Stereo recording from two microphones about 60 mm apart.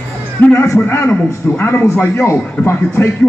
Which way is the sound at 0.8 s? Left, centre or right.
Left.